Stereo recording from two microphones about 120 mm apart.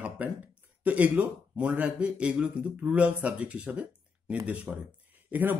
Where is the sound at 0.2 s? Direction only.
15° right (ahead or behind).